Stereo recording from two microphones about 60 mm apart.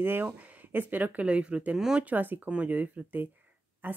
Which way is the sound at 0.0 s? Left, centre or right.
Right.